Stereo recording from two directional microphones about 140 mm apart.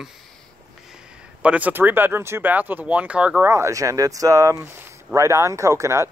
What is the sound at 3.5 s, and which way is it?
Speech, 20° right (ahead or behind).